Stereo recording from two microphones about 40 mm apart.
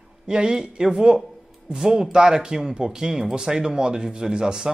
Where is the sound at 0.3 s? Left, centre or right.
Centre.